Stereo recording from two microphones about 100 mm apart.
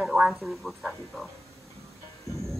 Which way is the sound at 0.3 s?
Centre (ahead or behind).